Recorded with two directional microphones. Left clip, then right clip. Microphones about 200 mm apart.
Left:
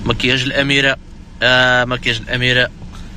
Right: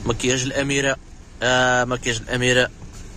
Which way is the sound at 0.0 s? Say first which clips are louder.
Left 6 dB; 15° right (ahead or behind).